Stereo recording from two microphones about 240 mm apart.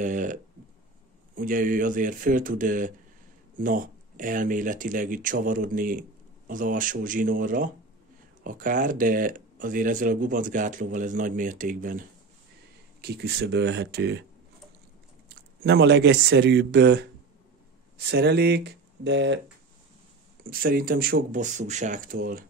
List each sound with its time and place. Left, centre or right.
0.0 s speech: right
15.6 s speech: right
20.4 s speech: right